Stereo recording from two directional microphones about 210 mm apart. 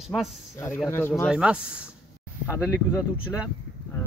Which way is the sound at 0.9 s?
10° left (ahead or behind).